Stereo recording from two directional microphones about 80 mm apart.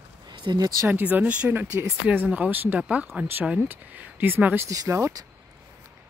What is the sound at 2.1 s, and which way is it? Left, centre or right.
Speech, centre.